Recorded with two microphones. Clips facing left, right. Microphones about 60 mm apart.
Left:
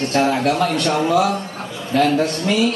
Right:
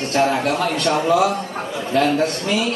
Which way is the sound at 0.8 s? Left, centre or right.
Centre.